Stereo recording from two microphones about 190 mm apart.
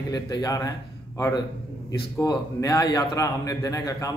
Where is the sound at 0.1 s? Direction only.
20° left (ahead or behind).